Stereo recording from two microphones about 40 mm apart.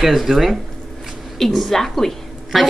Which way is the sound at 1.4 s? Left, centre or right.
Centre.